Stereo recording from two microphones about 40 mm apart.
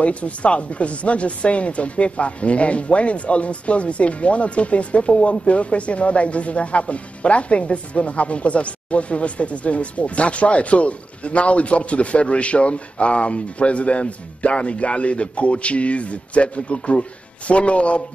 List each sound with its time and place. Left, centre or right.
0.0 s speech: left